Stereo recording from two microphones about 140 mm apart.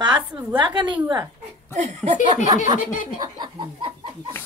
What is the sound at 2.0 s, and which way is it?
Speech, 5° left (ahead or behind).